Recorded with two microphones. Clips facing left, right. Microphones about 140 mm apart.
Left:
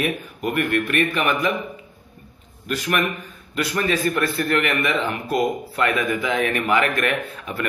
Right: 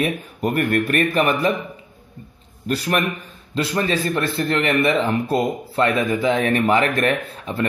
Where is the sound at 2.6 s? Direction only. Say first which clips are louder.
Right 2 dB; 35° right (ahead or behind).